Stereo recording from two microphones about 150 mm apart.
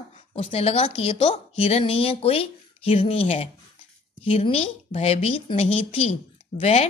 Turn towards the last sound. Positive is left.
turn(degrees=50)  # may be behind; listen again after turning